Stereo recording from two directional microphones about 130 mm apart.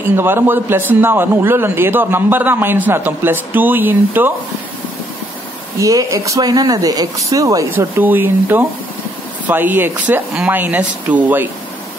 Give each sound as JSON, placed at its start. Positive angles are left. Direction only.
{"t": 0.1, "sound": "a man's voice", "side_deg": -15}
{"t": 5.8, "sound": "speech", "side_deg": -25}
{"t": 7.7, "sound": "a man's voice", "side_deg": -15}